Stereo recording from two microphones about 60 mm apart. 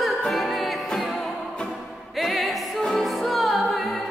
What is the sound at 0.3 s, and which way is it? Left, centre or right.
Music, centre.